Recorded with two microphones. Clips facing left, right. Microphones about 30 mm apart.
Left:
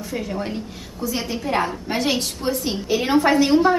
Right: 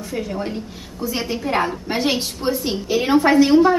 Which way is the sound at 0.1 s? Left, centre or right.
Centre.